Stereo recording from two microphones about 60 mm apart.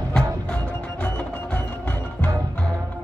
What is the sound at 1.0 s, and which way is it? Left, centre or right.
Music, left.